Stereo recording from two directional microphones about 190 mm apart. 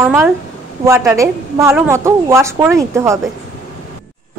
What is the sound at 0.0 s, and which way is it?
A woman's voice, 10° right (ahead or behind).